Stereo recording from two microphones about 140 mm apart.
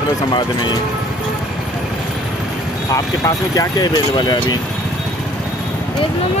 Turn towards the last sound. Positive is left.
turn(degrees=30)  # may be behind; listen again after turning